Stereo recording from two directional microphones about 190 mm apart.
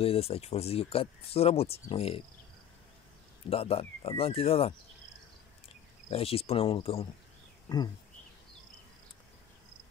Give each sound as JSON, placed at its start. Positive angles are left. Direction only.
{"t": 0.0, "sound": "speech", "side_deg": 30}
{"t": 3.4, "sound": "speech", "side_deg": 30}
{"t": 6.0, "sound": "speech", "side_deg": 30}